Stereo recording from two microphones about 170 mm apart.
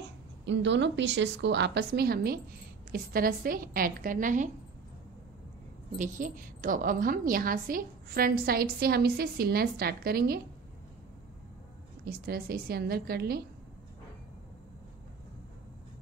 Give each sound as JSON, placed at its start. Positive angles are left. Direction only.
{"t": 0.5, "sound": "a woman's voice", "side_deg": -90}
{"t": 5.9, "sound": "a woman's voice", "side_deg": -50}
{"t": 12.0, "sound": "a woman's voice", "side_deg": -65}